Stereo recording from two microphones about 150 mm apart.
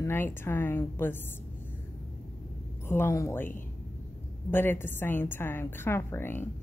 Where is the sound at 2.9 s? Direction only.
15° left (ahead or behind).